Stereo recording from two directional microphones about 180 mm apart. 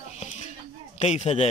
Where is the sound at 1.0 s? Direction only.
40° left (ahead or behind).